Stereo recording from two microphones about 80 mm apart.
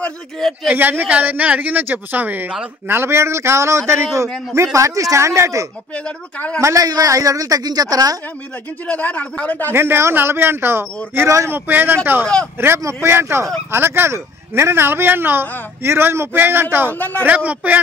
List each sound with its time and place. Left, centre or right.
0.4 s speech: centre
0.7 s speech: right
2.9 s a man's voice: right
5.9 s speech: centre
6.6 s speech: right
8.8 s speech: centre
9.7 s a man's voice: right
17.0 s speech: centre
17.3 s speech: centre